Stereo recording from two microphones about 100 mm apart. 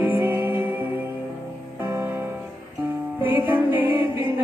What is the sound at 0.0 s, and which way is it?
Music, 20° right (ahead or behind).